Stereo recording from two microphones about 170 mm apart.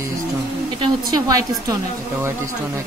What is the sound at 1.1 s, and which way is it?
Speech, 20° right (ahead or behind).